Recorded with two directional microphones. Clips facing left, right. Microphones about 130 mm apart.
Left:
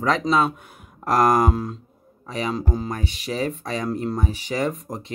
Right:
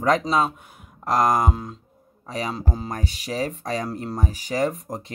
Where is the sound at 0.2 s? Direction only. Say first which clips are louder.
Left 2 dB; 35° right (ahead or behind).